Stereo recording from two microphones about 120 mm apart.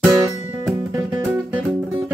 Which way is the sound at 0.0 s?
25° right (ahead or behind).